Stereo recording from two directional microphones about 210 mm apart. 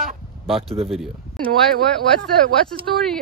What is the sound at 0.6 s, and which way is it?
Speech, 25° right (ahead or behind).